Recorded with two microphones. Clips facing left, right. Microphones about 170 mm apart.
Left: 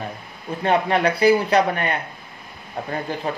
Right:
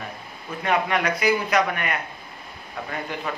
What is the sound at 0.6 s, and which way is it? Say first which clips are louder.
A man's voice: left 4 dB; 30° left (ahead or behind).